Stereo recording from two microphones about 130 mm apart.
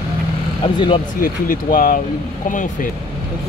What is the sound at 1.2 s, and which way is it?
Speech, 90° left.